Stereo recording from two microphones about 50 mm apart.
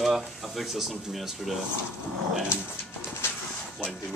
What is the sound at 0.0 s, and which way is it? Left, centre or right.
Speech, centre.